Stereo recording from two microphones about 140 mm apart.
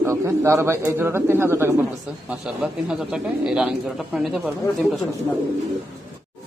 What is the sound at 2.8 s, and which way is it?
A man's voice, 5° right (ahead or behind).